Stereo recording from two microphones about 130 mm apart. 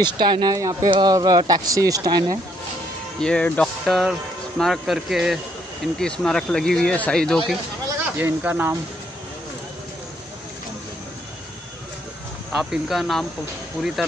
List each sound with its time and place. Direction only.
0.0 s speech: 35° right (ahead or behind)
0.8 s speech: 40° right (ahead or behind)
1.1 s speech: 30° right (ahead or behind)
3.2 s speech: 5° left (ahead or behind)
8.0 s speech: 15° right (ahead or behind)
12.5 s speech: centre (ahead or behind)